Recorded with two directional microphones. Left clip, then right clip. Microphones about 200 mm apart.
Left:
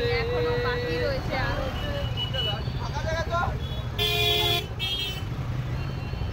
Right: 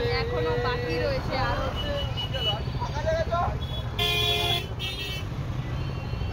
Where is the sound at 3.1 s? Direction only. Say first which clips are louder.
Right 4 dB; 40° left (ahead or behind).